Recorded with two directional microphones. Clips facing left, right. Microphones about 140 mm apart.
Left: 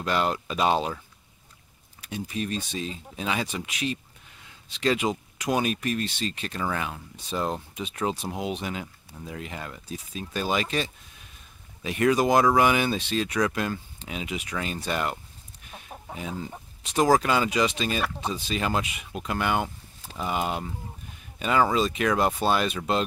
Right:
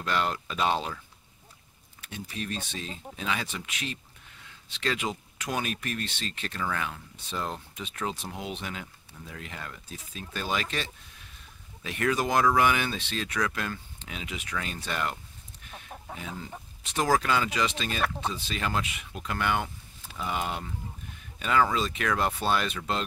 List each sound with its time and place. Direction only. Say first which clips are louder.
0.0 s speech: left 3 dB; 20° left (ahead or behind)
2.0 s speech: left 6 dB; 15° left (ahead or behind)